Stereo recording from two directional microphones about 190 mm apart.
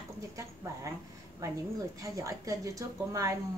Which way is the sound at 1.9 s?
15° right (ahead or behind).